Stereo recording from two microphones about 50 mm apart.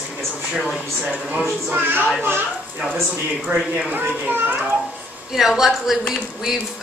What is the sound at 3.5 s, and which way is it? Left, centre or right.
A woman's voice, right.